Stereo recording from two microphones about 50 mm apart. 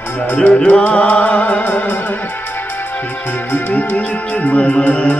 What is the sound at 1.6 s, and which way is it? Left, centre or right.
Music, left.